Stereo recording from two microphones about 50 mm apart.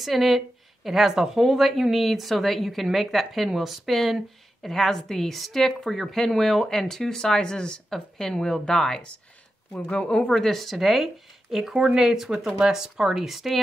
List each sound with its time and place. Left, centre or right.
0.0 s a woman's voice: centre; by 10.3 s left
10.3 s a woman's voice: centre
11.7 s speech: centre